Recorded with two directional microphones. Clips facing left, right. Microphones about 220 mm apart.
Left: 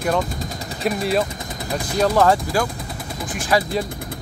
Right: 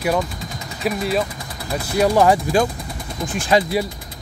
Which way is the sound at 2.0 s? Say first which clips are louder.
Right 2 dB; 15° right (ahead or behind).